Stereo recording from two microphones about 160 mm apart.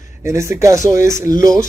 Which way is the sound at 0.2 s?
15° right (ahead or behind).